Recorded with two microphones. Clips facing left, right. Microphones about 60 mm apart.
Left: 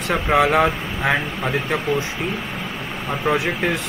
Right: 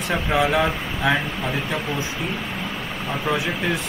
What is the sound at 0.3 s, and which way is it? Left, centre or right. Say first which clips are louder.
Speech: left 4 dB; left.